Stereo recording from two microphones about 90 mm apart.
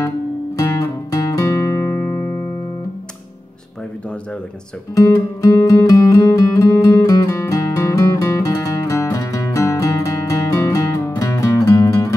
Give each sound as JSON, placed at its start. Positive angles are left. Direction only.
{"t": 0.6, "sound": "music", "side_deg": 40}
{"t": 4.9, "sound": "music", "side_deg": 40}